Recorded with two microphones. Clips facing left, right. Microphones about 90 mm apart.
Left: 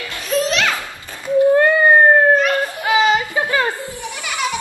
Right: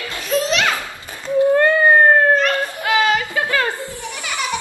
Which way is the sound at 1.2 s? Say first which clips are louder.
Left 2 dB; 10° left (ahead or behind).